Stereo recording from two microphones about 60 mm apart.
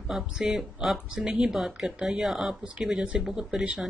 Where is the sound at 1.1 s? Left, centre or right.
Centre.